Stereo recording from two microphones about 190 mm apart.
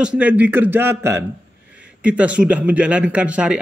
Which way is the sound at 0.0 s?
5° right (ahead or behind).